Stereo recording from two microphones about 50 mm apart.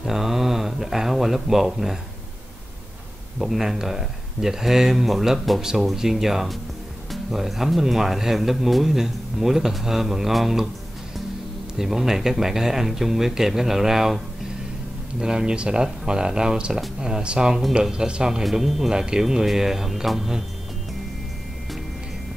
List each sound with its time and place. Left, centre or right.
0.0 s a sound: centre
3.3 s speech: centre
11.8 s speech: centre
18.4 s speech: centre